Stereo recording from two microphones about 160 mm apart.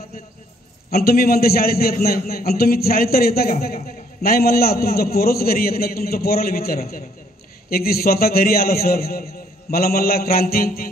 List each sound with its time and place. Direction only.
0.8 s a man's voice: 70° left (ahead or behind)